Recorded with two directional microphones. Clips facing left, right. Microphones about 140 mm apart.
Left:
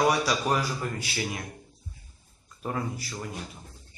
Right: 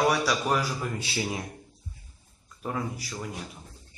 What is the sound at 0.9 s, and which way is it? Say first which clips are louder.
Speech: right 2 dB; 25° right (ahead or behind).